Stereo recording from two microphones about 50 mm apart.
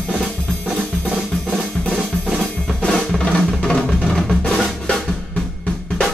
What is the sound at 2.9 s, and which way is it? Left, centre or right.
Drum, centre.